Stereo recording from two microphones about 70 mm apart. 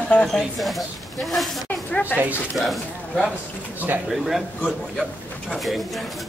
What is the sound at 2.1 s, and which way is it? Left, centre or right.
Speech, left.